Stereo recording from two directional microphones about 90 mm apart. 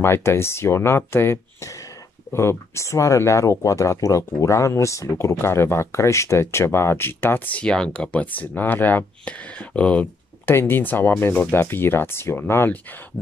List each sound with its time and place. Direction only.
0.0 s speech: 25° left (ahead or behind)
10.5 s speech: 25° left (ahead or behind)